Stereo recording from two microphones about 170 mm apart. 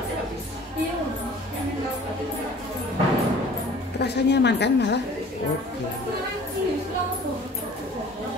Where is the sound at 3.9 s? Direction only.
80° left.